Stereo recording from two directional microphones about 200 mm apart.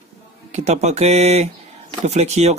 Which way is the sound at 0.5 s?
35° right (ahead or behind).